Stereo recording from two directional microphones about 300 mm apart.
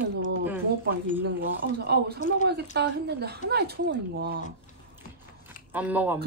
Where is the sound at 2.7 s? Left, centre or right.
Right.